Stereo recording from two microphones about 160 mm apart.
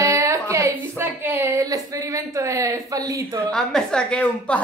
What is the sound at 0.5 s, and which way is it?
A woman's voice, 15° right (ahead or behind).